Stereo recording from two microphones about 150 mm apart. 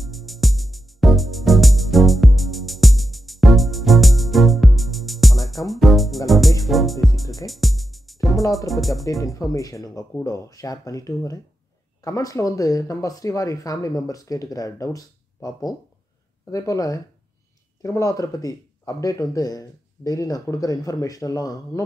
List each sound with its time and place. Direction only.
0.0 s music: centre (ahead or behind)
8.5 s speech: centre (ahead or behind)
9.2 s speech: 20° left (ahead or behind)